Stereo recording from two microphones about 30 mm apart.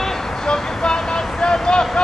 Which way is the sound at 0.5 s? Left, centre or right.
Left.